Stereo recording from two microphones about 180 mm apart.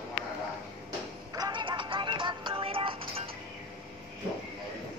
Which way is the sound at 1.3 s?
25° right (ahead or behind).